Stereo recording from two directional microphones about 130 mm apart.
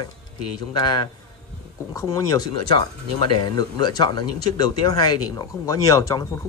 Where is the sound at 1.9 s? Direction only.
30° left (ahead or behind).